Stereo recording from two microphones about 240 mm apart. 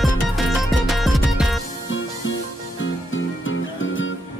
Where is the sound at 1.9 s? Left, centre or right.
Left.